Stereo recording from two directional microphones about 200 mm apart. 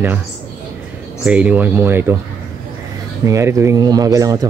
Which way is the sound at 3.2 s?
15° right (ahead or behind).